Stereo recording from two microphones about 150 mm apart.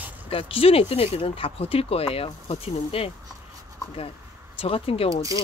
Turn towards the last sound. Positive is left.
turn(degrees=40)  # may be behind; listen again after turning